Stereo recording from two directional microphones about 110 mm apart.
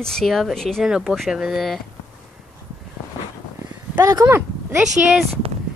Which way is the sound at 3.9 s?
25° right (ahead or behind).